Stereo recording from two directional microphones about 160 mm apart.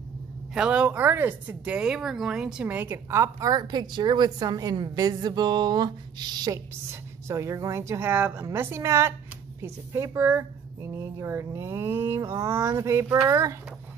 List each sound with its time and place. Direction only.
0.6 s speech: 5° right (ahead or behind)